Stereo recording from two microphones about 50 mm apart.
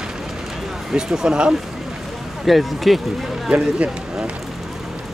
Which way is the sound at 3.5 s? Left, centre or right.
Right.